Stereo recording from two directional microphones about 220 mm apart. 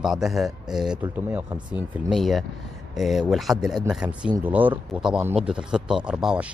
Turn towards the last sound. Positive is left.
turn(degrees=-5)  # may be behind; listen again after turning